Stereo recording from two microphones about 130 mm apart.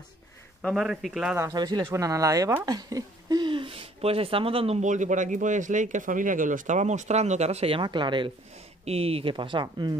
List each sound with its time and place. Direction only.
0.6 s speech: centre (ahead or behind)
1.4 s speech: 30° right (ahead or behind)
8.8 s speech: 50° right (ahead or behind); by 9.9 s 35° right (ahead or behind)